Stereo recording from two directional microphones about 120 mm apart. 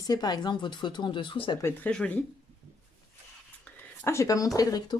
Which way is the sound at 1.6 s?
10° left (ahead or behind).